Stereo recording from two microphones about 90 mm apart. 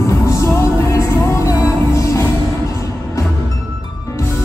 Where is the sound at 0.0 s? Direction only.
35° left (ahead or behind).